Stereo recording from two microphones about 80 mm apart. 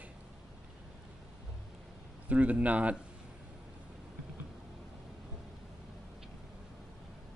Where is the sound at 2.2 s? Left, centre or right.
Centre.